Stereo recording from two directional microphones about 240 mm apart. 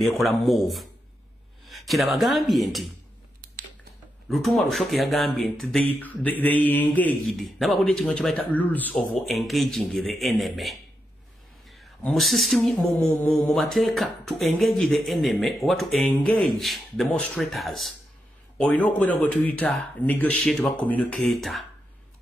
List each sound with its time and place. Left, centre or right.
0.0 s speech: centre
4.3 s speech: centre